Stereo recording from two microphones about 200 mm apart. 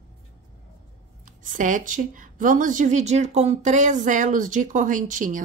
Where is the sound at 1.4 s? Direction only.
40° right (ahead or behind).